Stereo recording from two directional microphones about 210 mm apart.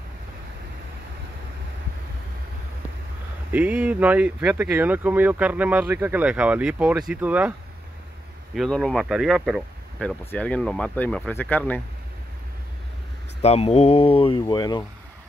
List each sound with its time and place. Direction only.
3.5 s speech: 5° right (ahead or behind)
8.5 s speech: 5° left (ahead or behind)
13.4 s speech: 30° left (ahead or behind)